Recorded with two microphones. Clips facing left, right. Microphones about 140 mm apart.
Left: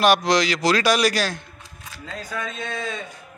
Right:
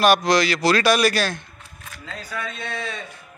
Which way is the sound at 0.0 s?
15° left (ahead or behind).